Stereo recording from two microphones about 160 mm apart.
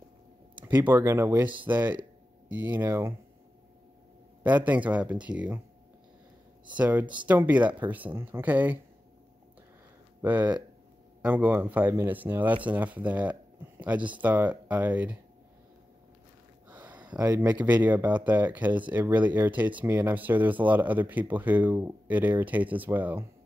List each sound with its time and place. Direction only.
0.8 s speech: 15° right (ahead or behind)
4.4 s speech: 10° right (ahead or behind)
6.8 s speech: 10° right (ahead or behind)
10.2 s speech: 10° right (ahead or behind)
16.6 s a sound: 10° right (ahead or behind)
16.9 s a sound: 25° right (ahead or behind)
17.3 s speech: 10° right (ahead or behind)